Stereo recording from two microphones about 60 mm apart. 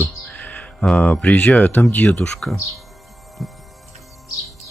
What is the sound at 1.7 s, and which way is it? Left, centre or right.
Speech, left.